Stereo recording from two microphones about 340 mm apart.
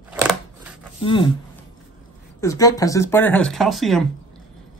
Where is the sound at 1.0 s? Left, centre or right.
Centre.